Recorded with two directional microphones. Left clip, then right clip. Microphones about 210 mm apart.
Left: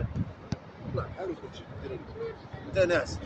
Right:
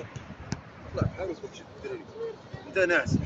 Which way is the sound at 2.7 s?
55° left (ahead or behind).